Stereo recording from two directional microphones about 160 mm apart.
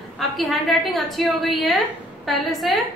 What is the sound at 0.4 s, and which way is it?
A woman's voice, centre (ahead or behind).